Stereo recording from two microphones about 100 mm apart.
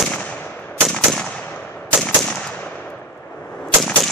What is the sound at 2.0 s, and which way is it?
Gunshot, 10° left (ahead or behind).